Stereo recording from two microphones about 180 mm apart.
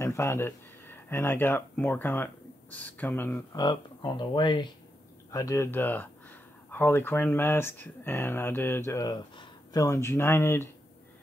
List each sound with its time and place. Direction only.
0.0 s speech: 15° left (ahead or behind)
3.5 s speech: 25° left (ahead or behind)